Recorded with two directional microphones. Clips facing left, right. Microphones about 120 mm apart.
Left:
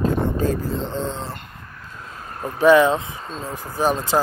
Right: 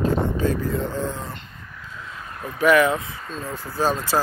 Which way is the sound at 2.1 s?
40° left (ahead or behind).